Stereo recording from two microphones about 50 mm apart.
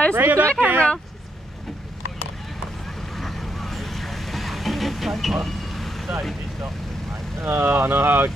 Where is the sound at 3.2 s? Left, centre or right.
Centre.